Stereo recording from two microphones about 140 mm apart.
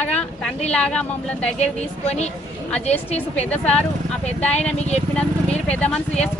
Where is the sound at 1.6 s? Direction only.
50° left (ahead or behind).